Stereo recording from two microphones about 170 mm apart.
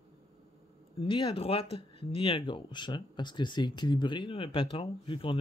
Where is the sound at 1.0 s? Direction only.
30° left (ahead or behind).